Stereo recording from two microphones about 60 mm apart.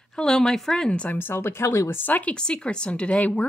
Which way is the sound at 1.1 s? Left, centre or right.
Left.